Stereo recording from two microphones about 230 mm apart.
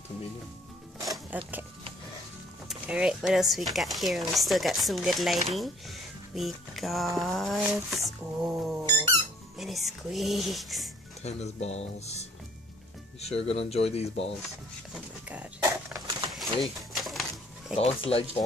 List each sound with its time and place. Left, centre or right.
1.0 s speech: centre
2.7 s speech: centre
11.2 s speech: left
13.2 s speech: left
15.2 s a sound: centre
17.7 s speech: left